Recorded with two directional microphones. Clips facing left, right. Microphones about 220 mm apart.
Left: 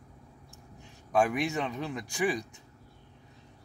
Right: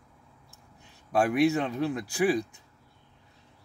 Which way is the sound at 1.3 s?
Centre (ahead or behind).